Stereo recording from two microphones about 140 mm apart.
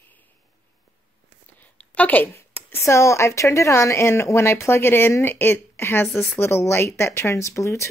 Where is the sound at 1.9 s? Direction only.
10° left (ahead or behind).